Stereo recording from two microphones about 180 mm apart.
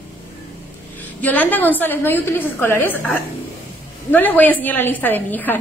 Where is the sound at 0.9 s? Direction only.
10° left (ahead or behind).